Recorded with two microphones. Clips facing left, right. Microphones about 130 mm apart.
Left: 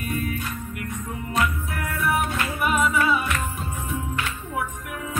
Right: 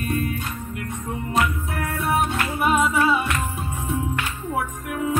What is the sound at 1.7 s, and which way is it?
Music, 30° right (ahead or behind).